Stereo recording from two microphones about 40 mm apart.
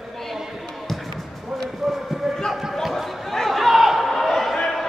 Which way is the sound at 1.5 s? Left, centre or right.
Centre.